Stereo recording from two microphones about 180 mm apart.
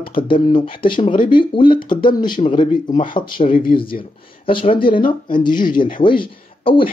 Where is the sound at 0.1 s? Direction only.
25° left (ahead or behind).